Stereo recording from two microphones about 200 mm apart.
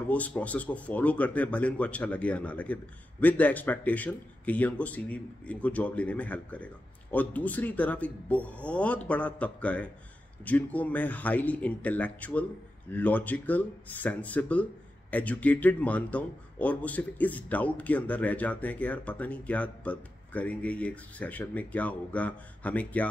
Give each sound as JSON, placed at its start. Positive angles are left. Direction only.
{"t": 0.1, "sound": "speech", "side_deg": 5}